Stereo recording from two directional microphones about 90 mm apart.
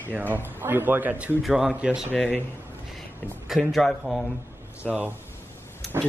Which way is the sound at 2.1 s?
5° left (ahead or behind).